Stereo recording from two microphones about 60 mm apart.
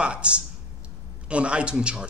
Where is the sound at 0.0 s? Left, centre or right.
Centre.